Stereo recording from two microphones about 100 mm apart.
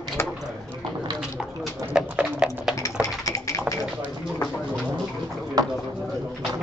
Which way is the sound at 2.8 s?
35° left (ahead or behind).